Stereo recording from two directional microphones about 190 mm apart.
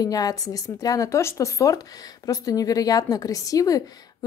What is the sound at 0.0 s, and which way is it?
Speech, 20° left (ahead or behind).